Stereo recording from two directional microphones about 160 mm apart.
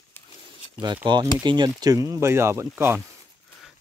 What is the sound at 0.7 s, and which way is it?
Speech, 25° right (ahead or behind).